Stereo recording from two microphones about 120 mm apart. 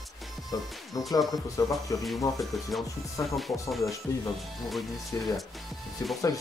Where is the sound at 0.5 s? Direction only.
30° left (ahead or behind).